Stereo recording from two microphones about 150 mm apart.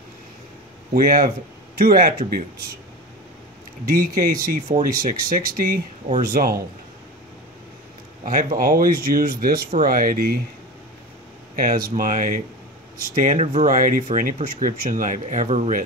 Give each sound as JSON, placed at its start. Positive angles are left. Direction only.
{"t": 0.9, "sound": "speech", "side_deg": -70}
{"t": 1.8, "sound": "speech", "side_deg": -80}
{"t": 3.9, "sound": "speech", "side_deg": -70}
{"t": 8.3, "sound": "speech", "side_deg": -65}
{"t": 9.7, "sound": "speech", "side_deg": -65}
{"t": 11.5, "sound": "speech", "side_deg": -75}
{"t": 11.9, "sound": "speech", "side_deg": -55}